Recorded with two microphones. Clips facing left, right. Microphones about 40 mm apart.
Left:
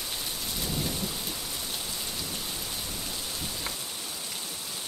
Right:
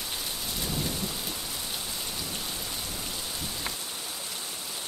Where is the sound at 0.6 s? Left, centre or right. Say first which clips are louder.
Even; centre.